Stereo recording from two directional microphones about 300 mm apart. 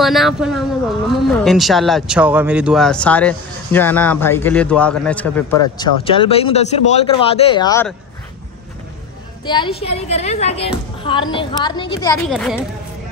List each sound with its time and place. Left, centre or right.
0.0 s speech: centre
6.0 s speech: centre
9.5 s a woman's voice: centre
12.3 s speech: centre